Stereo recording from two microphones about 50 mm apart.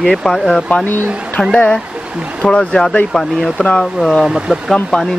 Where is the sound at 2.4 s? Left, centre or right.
Left.